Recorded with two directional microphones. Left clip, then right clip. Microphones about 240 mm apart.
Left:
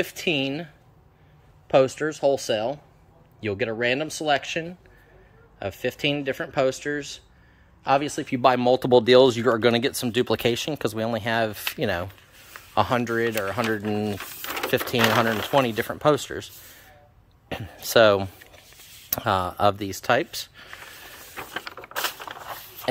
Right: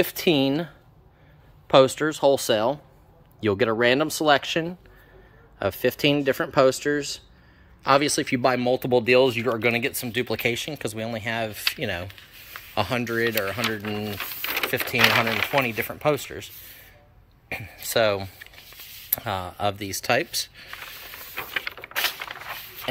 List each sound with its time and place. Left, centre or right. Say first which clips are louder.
0.0 s speech: right 3 dB; centre
8.5 s speech: left 5 dB; centre
13.7 s speech: left 2 dB; left
21.5 s patter: right 6 dB; left